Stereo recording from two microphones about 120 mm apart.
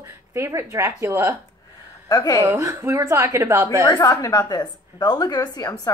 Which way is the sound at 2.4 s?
25° right (ahead or behind).